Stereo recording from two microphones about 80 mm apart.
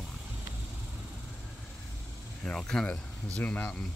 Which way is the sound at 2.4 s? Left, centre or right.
Centre.